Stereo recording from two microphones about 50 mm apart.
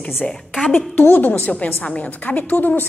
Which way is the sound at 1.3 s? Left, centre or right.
Left.